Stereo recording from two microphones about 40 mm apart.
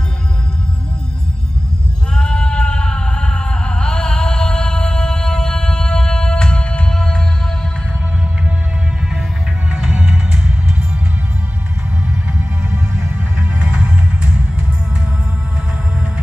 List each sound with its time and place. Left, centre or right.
2.1 s a sound: left
6.9 s music: centre
9.7 s music: centre
12.4 s music: right
13.6 s music: right